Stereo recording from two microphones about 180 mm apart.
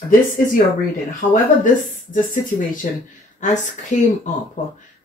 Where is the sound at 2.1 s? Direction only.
50° left (ahead or behind).